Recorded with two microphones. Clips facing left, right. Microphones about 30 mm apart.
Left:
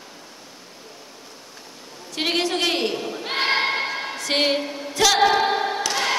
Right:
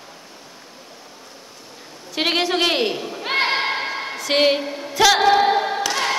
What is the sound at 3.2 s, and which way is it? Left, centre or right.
Thump, centre.